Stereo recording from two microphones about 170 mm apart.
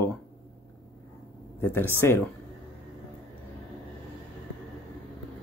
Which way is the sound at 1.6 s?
10° left (ahead or behind).